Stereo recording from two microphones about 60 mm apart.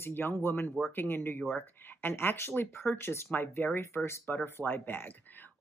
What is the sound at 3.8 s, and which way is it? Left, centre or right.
Speech, left.